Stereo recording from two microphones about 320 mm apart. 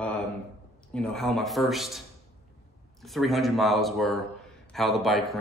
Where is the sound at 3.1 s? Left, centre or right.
Centre.